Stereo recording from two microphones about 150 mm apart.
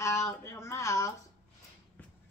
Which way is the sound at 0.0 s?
20° left (ahead or behind).